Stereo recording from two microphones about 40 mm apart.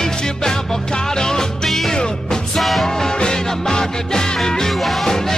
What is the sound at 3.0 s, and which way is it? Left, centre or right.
Music, centre.